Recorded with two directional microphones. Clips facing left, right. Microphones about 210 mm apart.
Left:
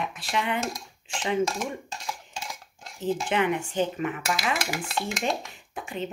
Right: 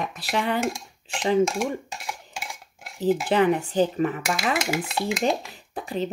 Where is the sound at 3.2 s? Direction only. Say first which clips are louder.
Right 5 dB; 35° right (ahead or behind).